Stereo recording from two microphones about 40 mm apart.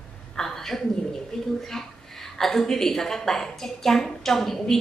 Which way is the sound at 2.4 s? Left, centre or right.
Centre.